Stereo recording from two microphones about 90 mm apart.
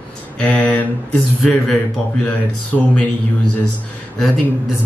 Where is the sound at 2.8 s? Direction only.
10° left (ahead or behind).